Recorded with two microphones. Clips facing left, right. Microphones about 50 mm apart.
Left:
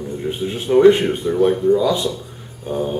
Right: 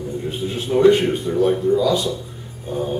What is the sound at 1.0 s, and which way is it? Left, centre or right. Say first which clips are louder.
Speech: left 2 dB; centre.